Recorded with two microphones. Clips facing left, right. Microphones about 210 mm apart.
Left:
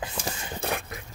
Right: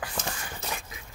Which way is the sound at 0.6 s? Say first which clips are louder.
Left 8 dB; 60° left (ahead or behind).